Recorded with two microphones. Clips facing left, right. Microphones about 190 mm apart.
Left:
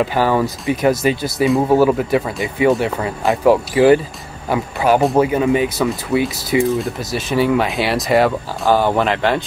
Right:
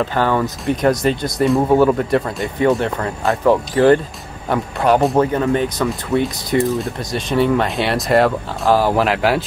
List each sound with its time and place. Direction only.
0.0 s speech: 10° left (ahead or behind)